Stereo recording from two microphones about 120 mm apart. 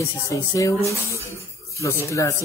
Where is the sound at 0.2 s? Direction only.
30° left (ahead or behind).